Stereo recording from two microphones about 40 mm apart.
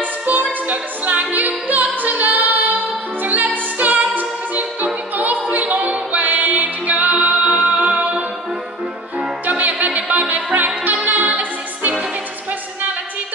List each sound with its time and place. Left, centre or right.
0.3 s music: right
9.5 s music: right